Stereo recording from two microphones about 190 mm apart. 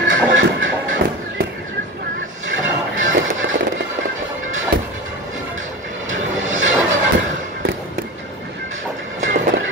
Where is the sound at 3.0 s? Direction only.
85° right.